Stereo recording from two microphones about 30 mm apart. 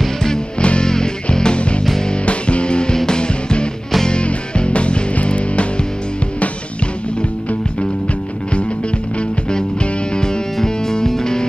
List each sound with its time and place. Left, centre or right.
0.0 s music: centre
0.6 s music: left
0.8 s music: left
2.2 s music: left
10.1 s music: left
10.6 s music: centre